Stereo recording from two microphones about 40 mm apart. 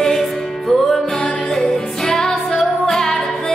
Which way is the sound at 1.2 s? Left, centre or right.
Left.